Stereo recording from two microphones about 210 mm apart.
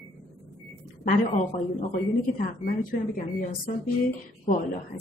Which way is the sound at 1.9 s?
40° left (ahead or behind).